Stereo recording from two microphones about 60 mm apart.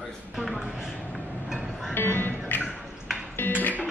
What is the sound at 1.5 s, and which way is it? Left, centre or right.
Music, centre.